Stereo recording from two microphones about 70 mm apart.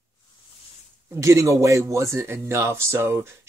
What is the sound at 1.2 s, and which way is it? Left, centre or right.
Speech, right.